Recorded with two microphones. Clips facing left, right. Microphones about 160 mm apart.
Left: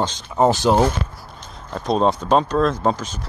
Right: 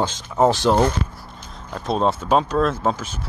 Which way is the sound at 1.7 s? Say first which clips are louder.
Left 2 dB; centre (ahead or behind).